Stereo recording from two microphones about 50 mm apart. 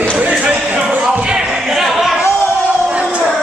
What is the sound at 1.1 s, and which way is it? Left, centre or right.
Music, centre.